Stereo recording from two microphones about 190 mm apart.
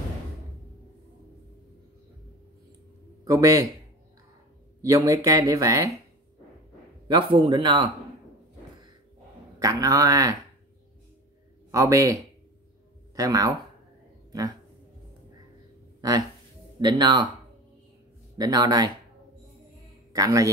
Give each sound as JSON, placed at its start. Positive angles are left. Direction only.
{"t": 3.3, "sound": "speech", "side_deg": -15}
{"t": 4.8, "sound": "speech", "side_deg": -15}
{"t": 7.1, "sound": "a man's voice", "side_deg": -25}
{"t": 9.6, "sound": "speech", "side_deg": -20}
{"t": 11.7, "sound": "speech", "side_deg": -15}
{"t": 16.0, "sound": "a man's voice", "side_deg": -20}
{"t": 18.4, "sound": "a man's voice", "side_deg": -20}
{"t": 20.1, "sound": "a man's voice", "side_deg": -15}